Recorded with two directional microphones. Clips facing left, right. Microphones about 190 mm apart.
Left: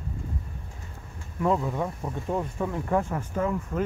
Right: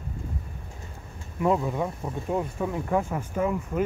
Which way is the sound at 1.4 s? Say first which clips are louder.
Right 1 dB; 10° right (ahead or behind).